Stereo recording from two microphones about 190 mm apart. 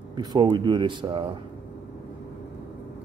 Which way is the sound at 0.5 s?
25° right (ahead or behind).